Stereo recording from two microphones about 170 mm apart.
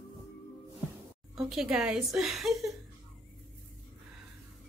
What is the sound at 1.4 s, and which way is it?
A woman's voice, centre (ahead or behind).